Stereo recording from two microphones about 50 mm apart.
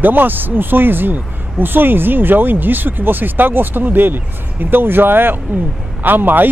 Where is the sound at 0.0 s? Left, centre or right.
Right.